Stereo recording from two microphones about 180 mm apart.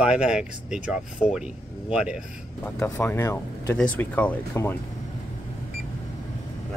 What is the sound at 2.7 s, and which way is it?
Speech, 10° left (ahead or behind).